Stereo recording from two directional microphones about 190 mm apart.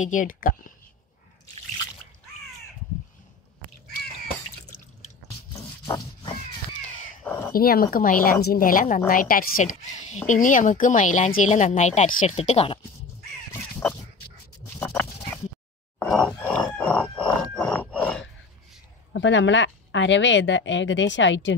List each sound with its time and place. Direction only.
0.0 s a woman's voice: 45° left (ahead or behind)
5.5 s pig: 20° left (ahead or behind)
6.8 s crow: 40° left (ahead or behind)
7.2 s a sound: 10° left (ahead or behind)
7.5 s a woman's voice: 50° left (ahead or behind); by 12.8 s 30° left (ahead or behind)
14.8 s pig: 10° left (ahead or behind)
16.1 s a sound: centre (ahead or behind)
19.1 s speech: 75° left (ahead or behind)